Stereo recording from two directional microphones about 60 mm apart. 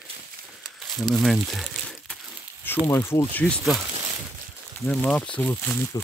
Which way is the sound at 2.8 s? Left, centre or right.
Left.